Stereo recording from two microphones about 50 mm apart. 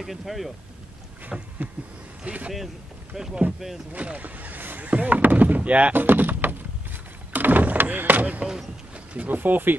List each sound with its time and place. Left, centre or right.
0.0 s speech: centre
1.3 s a sound: centre
2.2 s speech: right
3.1 s speech: centre
3.9 s vehicle: right
4.8 s speech: right
5.9 s a sound: right
9.3 s speech: right